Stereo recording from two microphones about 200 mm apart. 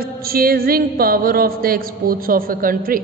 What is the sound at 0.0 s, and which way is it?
A woman's voice, 50° right (ahead or behind).